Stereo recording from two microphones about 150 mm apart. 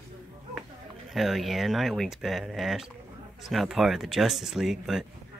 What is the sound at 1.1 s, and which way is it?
Speech, centre (ahead or behind).